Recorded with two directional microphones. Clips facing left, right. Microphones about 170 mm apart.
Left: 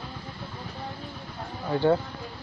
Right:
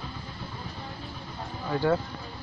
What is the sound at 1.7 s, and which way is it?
Speech, 25° left (ahead or behind).